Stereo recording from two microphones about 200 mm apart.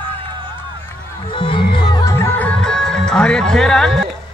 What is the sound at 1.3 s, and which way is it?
Music, 25° left (ahead or behind).